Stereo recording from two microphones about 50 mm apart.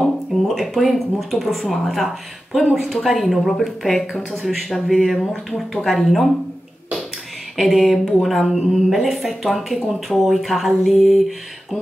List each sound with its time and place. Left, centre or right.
0.6 s speech: centre
7.6 s speech: centre